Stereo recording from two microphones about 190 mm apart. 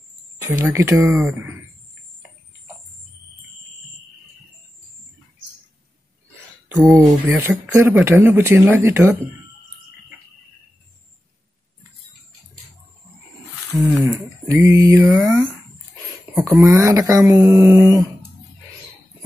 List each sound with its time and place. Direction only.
0.4 s speech: 15° right (ahead or behind)
7.0 s speech: 10° right (ahead or behind)
13.7 s speech: 10° left (ahead or behind)
14.0 s speech: 15° right (ahead or behind)